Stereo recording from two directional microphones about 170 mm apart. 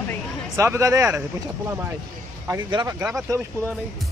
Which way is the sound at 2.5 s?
25° right (ahead or behind).